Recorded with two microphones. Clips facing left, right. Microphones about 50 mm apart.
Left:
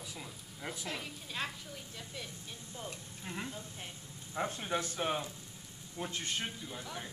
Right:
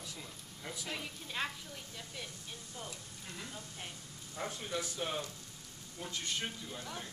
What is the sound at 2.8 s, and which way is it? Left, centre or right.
A man's voice, left.